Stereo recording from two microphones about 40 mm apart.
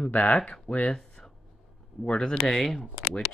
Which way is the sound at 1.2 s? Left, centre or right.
Left.